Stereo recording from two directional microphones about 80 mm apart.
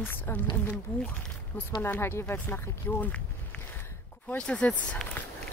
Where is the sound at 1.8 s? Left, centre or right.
Left.